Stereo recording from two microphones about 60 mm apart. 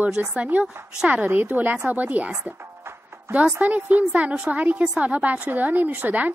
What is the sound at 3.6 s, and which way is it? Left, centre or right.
A woman's voice, right.